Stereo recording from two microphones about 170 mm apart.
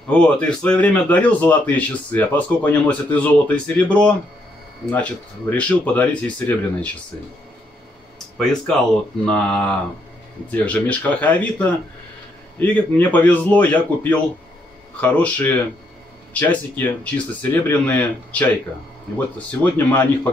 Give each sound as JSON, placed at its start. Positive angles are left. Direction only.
{"t": 0.1, "sound": "a man's voice", "side_deg": 5}
{"t": 9.2, "sound": "a man's voice", "side_deg": 5}